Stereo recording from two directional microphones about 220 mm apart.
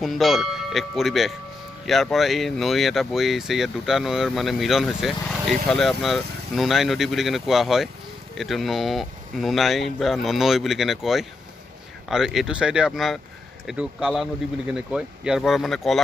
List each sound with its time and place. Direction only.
0.0 s speech: centre (ahead or behind)